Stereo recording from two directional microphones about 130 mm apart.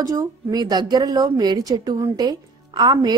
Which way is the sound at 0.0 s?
25° right (ahead or behind).